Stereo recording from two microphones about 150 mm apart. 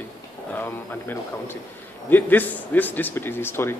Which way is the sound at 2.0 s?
10° left (ahead or behind).